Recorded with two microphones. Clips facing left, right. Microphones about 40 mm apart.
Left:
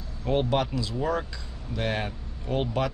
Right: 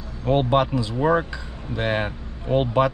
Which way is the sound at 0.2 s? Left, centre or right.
Right.